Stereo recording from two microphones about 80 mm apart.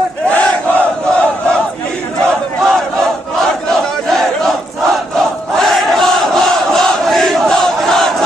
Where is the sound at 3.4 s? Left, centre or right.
Centre.